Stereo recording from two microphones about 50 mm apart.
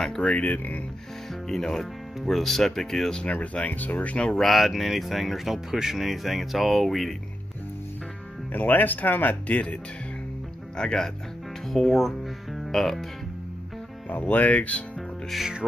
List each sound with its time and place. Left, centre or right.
0.2 s speech: centre
0.5 s speech: left
1.3 s speech: centre
3.3 s speech: left
4.3 s speech: centre
8.5 s speech: left
10.8 s speech: centre
12.5 s music: centre
14.0 s speech: left
15.0 s music: centre